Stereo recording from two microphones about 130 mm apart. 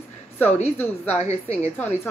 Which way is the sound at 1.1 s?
55° left (ahead or behind).